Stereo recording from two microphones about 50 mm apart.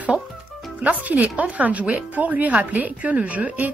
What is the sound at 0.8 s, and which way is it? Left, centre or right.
Speech, right.